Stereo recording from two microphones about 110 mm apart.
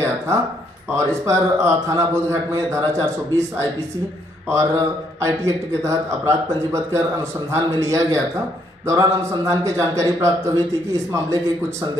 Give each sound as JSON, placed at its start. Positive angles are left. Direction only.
{"t": 0.9, "sound": "a man's voice", "side_deg": -25}